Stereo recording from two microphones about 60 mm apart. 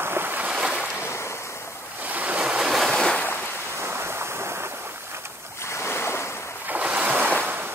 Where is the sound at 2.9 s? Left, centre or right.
Centre.